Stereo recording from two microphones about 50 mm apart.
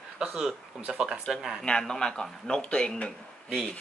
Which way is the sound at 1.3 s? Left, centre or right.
Centre.